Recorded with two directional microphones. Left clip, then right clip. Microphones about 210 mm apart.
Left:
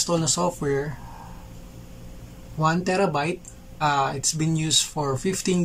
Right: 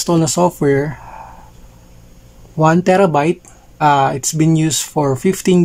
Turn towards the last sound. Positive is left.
turn(degrees=-35)  # may be behind; listen again after turning